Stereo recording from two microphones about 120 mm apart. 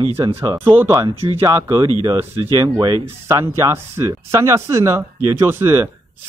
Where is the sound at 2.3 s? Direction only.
55° right (ahead or behind).